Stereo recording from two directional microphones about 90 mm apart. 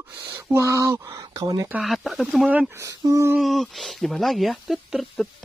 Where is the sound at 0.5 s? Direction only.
35° right (ahead or behind).